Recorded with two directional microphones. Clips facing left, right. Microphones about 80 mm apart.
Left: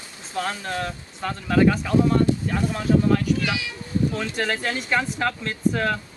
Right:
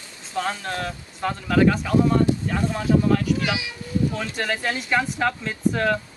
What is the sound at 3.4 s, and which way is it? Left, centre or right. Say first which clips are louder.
Speech: right 1 dB; centre.